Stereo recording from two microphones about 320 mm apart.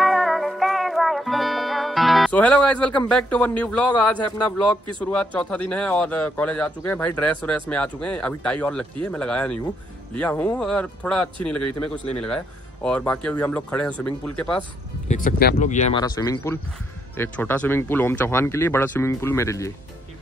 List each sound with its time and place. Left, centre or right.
0.0 s music: centre
5.0 s speech: centre
12.8 s speech: centre
15.0 s speech: left; by 19.7 s centre